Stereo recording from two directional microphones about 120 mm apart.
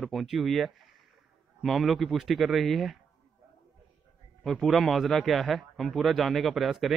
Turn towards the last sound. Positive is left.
turn(degrees=0)  # may be behind; listen again after turning